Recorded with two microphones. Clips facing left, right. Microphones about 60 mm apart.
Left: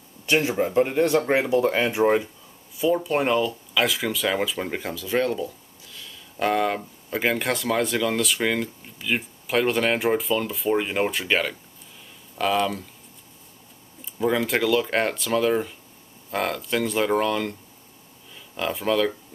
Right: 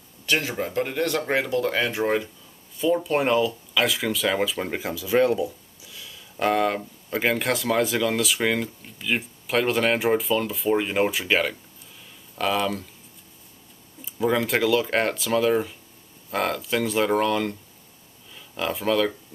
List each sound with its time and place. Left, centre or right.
0.3 s speech: centre
2.8 s speech: centre
14.0 s speech: centre